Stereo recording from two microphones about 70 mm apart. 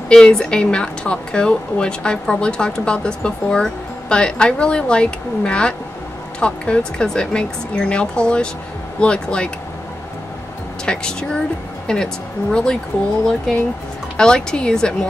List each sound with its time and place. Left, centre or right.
0.1 s a woman's voice: centre
10.9 s a woman's voice: centre
12.9 s speech: left
14.1 s a woman's voice: centre